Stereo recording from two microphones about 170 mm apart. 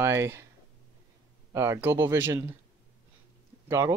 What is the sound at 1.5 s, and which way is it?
Speech, 15° right (ahead or behind).